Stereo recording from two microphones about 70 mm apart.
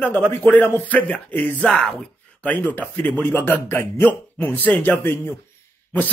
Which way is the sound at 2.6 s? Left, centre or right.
Left.